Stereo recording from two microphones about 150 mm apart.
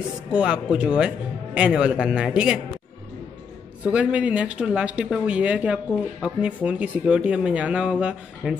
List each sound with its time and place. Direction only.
0.3 s speech: 5° right (ahead or behind)
3.8 s speech: 10° right (ahead or behind)